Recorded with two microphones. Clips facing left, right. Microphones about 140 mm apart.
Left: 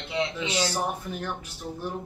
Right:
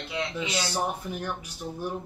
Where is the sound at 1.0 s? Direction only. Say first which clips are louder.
Even; 15° right (ahead or behind).